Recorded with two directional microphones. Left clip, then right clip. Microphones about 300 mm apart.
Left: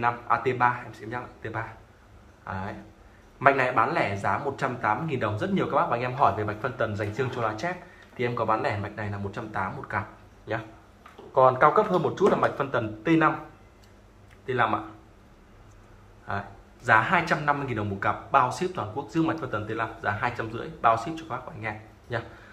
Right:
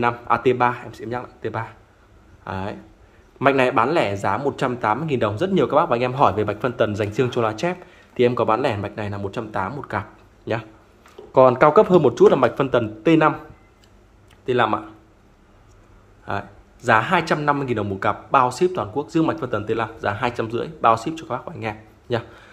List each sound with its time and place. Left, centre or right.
0.0 s speech: right
14.4 s speech: right
16.3 s speech: right